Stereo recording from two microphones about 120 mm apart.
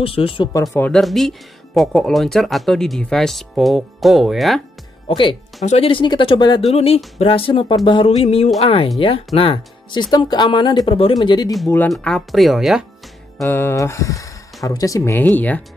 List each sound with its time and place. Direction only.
0.0 s speech: 50° left (ahead or behind)
0.7 s speech: 15° left (ahead or behind)
1.0 s speech: centre (ahead or behind)
5.0 s speech: 45° left (ahead or behind)
6.6 s speech: 55° left (ahead or behind)
11.1 s speech: 35° left (ahead or behind)
11.9 s speech: centre (ahead or behind)
13.4 s speech: 20° left (ahead or behind)
15.1 s speech: 15° left (ahead or behind)